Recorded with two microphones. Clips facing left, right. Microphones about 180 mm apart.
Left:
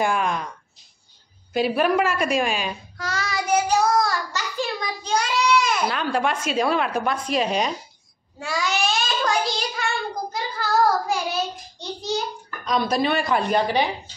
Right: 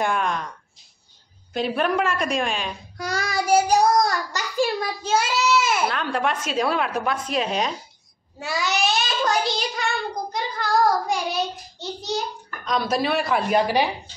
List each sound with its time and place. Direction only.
0.0 s a woman's voice: centre (ahead or behind)
1.5 s a woman's voice: 5° left (ahead or behind)
3.0 s child singing: 10° right (ahead or behind)
12.6 s a woman's voice: centre (ahead or behind)